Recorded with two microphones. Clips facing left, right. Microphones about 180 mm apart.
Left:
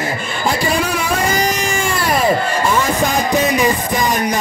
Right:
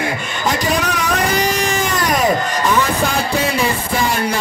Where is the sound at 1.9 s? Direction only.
10° left (ahead or behind).